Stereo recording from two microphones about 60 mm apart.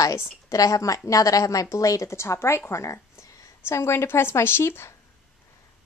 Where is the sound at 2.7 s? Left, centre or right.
Left.